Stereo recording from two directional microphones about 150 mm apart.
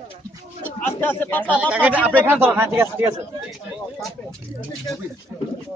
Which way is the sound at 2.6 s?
15° right (ahead or behind).